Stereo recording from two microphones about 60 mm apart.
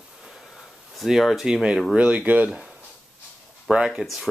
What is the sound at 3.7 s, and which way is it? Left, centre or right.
Speech, centre.